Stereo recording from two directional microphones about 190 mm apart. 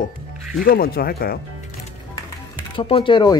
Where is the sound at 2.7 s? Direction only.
30° left (ahead or behind).